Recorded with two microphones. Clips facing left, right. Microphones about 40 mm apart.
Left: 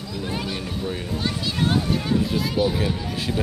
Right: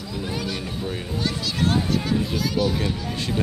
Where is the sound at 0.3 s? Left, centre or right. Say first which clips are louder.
Left 1 dB; centre.